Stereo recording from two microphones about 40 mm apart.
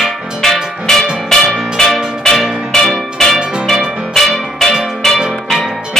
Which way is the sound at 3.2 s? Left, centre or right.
Centre.